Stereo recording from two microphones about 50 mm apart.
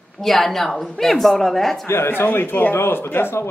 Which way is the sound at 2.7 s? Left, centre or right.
Left.